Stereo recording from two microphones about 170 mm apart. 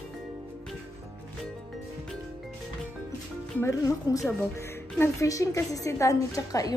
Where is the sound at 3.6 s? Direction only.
20° left (ahead or behind).